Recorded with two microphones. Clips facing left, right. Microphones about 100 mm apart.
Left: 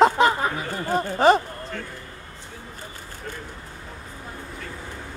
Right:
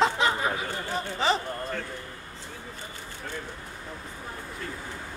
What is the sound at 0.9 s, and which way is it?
Speech, 50° left (ahead or behind).